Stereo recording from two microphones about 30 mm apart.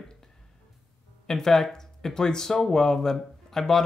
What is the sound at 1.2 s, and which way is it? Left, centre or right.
Speech, centre.